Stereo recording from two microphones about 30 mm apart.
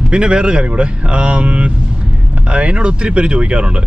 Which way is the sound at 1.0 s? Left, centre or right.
Right.